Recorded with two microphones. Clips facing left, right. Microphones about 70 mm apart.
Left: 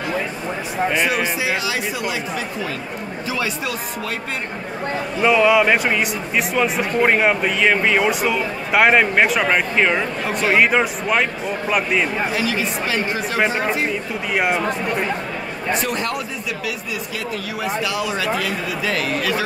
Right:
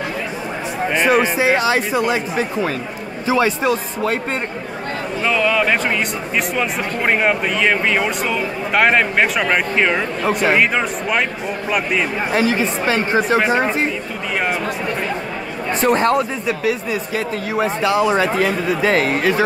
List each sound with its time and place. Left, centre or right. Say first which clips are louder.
1.0 s a man's voice: right 6 dB; right
5.2 s speech: left 3 dB; centre
12.3 s a man's voice: right 4 dB; right
14.3 s speech: left 1 dB; centre
15.7 s a man's voice: right 8 dB; right